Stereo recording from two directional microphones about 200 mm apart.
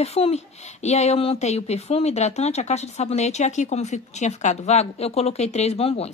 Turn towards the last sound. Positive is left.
turn(degrees=30)  # may be behind; listen again after turning